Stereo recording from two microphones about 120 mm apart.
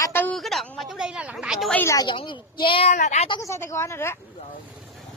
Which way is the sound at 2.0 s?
45° left (ahead or behind).